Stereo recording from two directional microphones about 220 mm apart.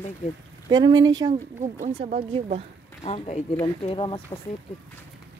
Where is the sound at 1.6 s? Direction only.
30° right (ahead or behind).